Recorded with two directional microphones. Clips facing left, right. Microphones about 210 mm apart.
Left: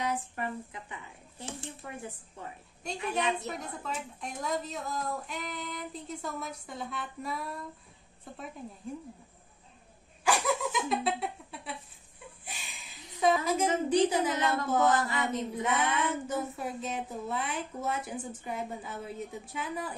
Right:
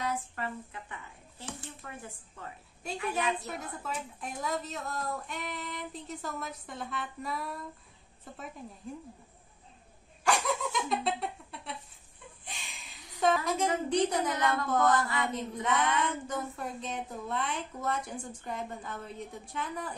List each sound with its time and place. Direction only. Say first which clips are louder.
0.0 s speech: left 2 dB; 20° left (ahead or behind)
3.4 s a woman's voice: left 1 dB; centre (ahead or behind)
10.2 s a sound: left 1 dB; 5° left (ahead or behind)
13.2 s a woman's voice: left 1 dB; centre (ahead or behind)
14.3 s speech: left 1 dB; 20° left (ahead or behind)
15.6 s speech: right 1 dB; 5° left (ahead or behind)